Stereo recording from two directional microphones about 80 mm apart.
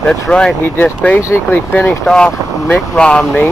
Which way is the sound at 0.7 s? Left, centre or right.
Left.